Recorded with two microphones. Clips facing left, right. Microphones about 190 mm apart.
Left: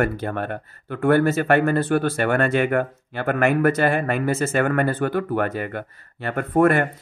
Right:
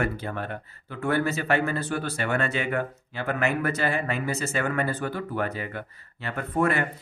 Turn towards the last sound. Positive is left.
turn(degrees=50)  # may be behind; listen again after turning